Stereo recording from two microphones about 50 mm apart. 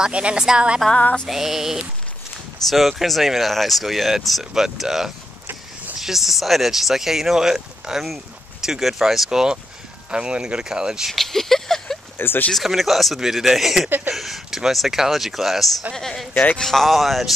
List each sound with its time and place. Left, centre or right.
0.0 s a woman's voice: right
0.9 s a sound: left
1.3 s speech: centre
11.1 s speech: centre
12.2 s speech: left
12.5 s speech: centre
15.9 s speech: centre